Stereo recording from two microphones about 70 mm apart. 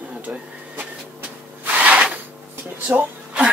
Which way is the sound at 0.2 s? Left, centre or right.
Right.